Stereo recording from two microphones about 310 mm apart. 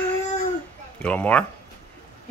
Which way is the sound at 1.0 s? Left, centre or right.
Centre.